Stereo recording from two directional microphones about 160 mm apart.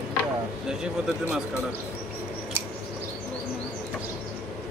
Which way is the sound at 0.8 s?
5° right (ahead or behind).